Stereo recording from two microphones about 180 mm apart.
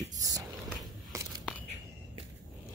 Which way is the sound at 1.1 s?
15° right (ahead or behind).